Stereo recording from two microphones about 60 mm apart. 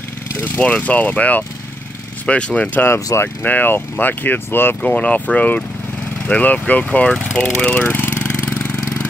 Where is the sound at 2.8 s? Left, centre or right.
Left.